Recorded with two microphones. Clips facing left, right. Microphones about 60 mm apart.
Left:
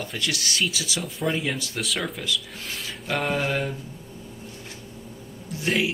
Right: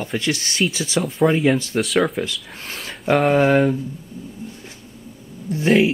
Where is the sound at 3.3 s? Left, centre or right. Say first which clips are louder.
Right 11 dB; right.